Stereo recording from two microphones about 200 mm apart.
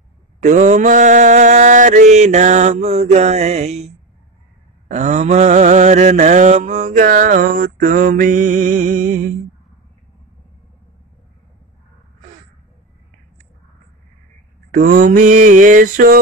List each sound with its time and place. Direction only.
0.4 s mantra: 35° right (ahead or behind)
14.7 s mantra: 45° right (ahead or behind)